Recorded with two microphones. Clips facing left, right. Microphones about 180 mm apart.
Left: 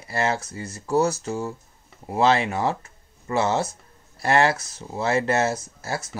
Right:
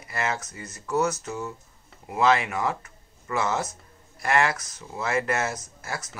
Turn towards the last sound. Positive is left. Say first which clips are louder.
# left 5 dB
turn(degrees=30)  # may be behind; listen again after turning